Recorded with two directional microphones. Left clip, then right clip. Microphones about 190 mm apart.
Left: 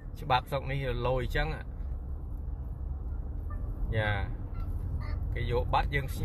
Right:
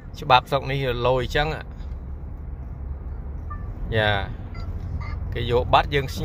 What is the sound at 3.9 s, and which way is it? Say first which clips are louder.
Speech: right 11 dB; 30° right (ahead or behind).